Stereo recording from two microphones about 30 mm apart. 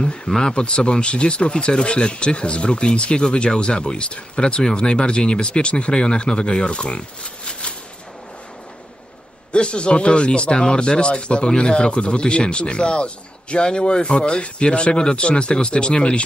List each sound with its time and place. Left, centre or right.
0.0 s speech: left
0.4 s a man's voice: left
9.5 s speech: left
10.5 s a man's voice: left
10.9 s a man's voice: left